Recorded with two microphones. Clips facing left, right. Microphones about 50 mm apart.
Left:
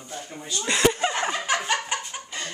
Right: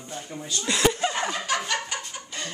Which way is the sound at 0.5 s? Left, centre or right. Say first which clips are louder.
Left 2 dB; centre.